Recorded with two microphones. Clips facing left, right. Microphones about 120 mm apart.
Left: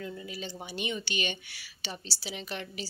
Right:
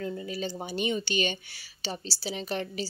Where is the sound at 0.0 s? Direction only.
40° right (ahead or behind).